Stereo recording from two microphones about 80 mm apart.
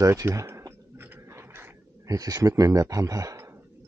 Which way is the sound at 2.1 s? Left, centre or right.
Right.